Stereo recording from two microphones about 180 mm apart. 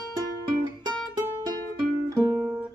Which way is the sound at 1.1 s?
20° right (ahead or behind).